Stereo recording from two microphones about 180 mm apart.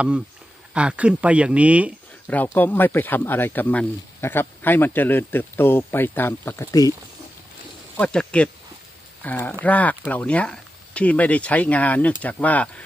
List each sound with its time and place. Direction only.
0.7 s speech: 5° right (ahead or behind)
2.2 s speech: 10° left (ahead or behind)
8.0 s speech: 5° left (ahead or behind)